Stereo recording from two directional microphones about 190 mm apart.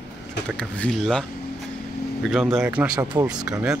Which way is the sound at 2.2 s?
Centre (ahead or behind).